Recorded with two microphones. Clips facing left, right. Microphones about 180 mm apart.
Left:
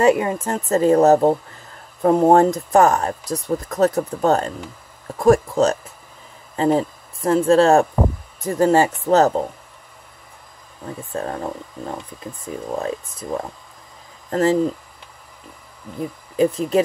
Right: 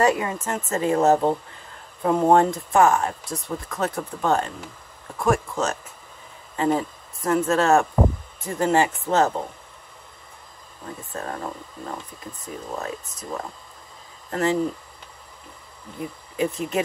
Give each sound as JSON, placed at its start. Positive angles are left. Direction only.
{"t": 0.0, "sound": "speech", "side_deg": 30}
{"t": 11.1, "sound": "speech", "side_deg": 30}
{"t": 14.3, "sound": "speech", "side_deg": 35}
{"t": 16.3, "sound": "speech", "side_deg": 35}